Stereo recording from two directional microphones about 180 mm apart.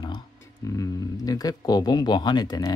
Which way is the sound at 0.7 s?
20° left (ahead or behind).